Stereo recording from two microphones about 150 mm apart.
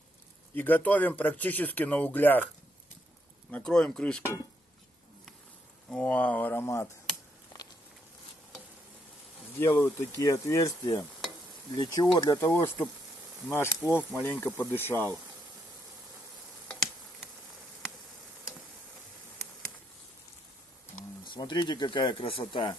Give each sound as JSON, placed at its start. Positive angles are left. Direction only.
{"t": 0.6, "sound": "speech", "side_deg": 10}
{"t": 3.5, "sound": "speech", "side_deg": 5}
{"t": 5.9, "sound": "speech", "side_deg": 5}
{"t": 9.6, "sound": "speech", "side_deg": 15}
{"t": 16.6, "sound": "tick", "side_deg": 5}
{"t": 21.3, "sound": "speech", "side_deg": 30}